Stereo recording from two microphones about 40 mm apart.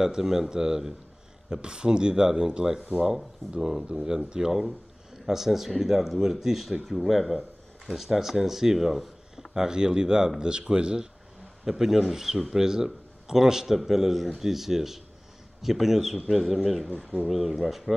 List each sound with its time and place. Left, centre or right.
0.0 s speech: centre
4.5 s speech: centre
9.5 s speech: centre
11.6 s speech: centre